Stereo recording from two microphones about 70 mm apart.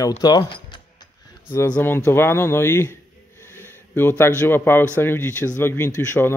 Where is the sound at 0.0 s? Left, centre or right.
Left.